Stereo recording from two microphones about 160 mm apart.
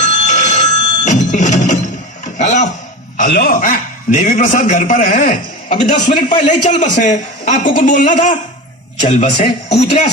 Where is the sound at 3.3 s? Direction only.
65° left (ahead or behind).